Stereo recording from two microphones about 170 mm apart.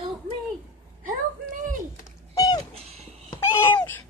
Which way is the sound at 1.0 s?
50° right (ahead or behind).